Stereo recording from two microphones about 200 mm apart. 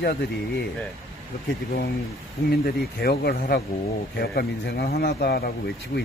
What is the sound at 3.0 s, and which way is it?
A man's voice, 50° left (ahead or behind).